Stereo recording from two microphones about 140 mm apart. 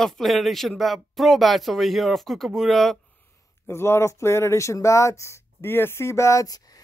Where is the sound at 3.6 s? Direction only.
15° left (ahead or behind).